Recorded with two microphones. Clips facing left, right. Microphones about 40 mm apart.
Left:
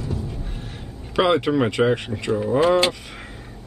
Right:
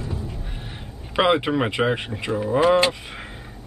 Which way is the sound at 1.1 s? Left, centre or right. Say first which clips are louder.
Left 1 dB; centre.